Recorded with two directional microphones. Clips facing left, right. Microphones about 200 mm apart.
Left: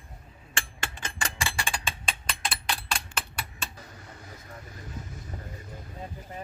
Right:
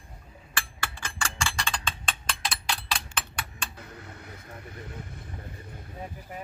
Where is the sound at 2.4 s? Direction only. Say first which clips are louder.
Left 1 dB; centre (ahead or behind).